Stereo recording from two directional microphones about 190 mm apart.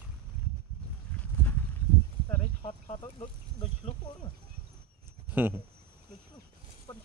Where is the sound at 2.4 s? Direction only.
30° left (ahead or behind).